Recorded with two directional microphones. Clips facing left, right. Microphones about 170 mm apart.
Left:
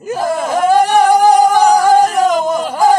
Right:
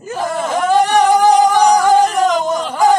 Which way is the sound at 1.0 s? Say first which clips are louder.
Left 1 dB; 45° left (ahead or behind).